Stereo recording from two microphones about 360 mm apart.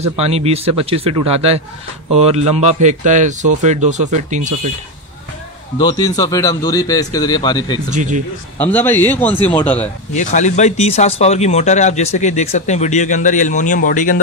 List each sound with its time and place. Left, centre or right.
0.2 s a man's voice: centre
5.8 s speech: centre
7.9 s a man's voice: centre
8.5 s a man's voice: centre
10.1 s speech: centre